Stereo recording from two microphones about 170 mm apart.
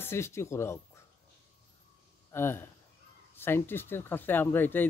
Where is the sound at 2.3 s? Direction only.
15° left (ahead or behind).